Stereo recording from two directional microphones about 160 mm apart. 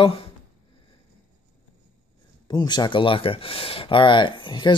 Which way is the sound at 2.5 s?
25° left (ahead or behind).